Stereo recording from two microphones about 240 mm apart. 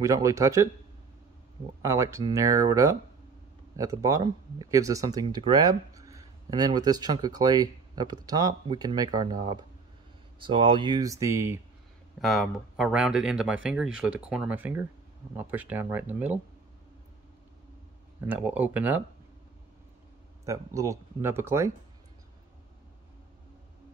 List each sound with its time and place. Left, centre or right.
0.0 s speech: centre
1.8 s speech: centre
12.2 s speech: centre
18.2 s speech: centre
20.4 s speech: centre